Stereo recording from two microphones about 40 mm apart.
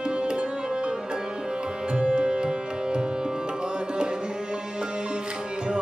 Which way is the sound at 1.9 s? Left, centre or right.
Right.